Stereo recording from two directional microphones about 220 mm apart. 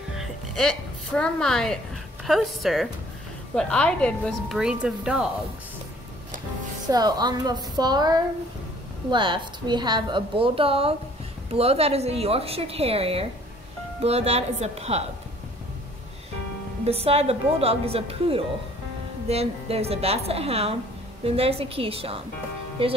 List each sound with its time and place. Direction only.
0.2 s a woman's voice: centre (ahead or behind)
6.9 s a woman's voice: 20° right (ahead or behind)
16.8 s a woman's voice: 25° right (ahead or behind)